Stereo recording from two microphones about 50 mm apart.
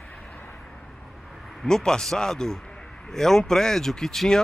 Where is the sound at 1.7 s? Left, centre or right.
Centre.